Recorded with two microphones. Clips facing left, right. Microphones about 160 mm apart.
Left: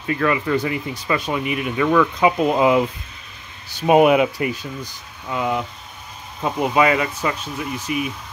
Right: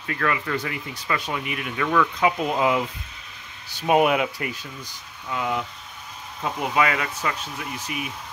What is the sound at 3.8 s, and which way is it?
Speech, 20° left (ahead or behind).